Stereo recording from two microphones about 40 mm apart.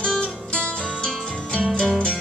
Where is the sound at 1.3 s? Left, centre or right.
Left.